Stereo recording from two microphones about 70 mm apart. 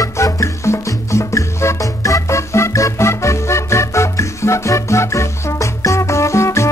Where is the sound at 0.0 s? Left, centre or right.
Left.